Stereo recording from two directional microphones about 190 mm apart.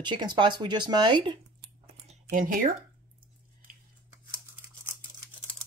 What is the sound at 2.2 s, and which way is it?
Speech, 45° right (ahead or behind).